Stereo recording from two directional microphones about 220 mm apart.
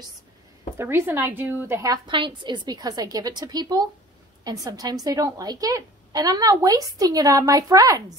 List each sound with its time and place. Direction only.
0.7 s a woman's voice: 10° right (ahead or behind)